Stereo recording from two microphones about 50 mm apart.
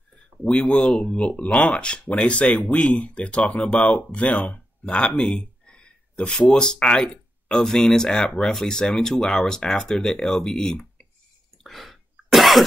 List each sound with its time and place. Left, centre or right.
0.4 s speech: left
11.6 s throat clearing: centre